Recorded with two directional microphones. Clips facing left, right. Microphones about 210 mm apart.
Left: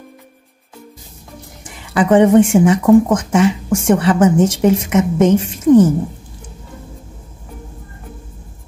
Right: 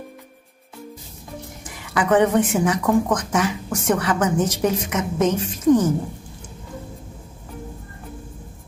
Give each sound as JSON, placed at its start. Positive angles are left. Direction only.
{"t": 2.0, "sound": "speech", "side_deg": 25}